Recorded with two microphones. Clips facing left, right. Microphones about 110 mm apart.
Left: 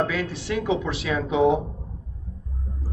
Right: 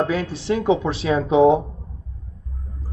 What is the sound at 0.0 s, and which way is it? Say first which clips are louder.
Speech: right 3 dB; 30° right (ahead or behind).